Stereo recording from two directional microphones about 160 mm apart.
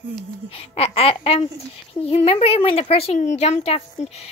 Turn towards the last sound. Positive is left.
turn(degrees=40)  # may be behind; listen again after turning